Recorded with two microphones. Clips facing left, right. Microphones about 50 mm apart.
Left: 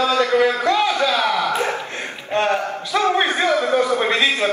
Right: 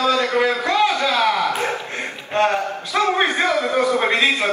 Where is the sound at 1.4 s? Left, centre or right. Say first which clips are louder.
Left 1 dB; left.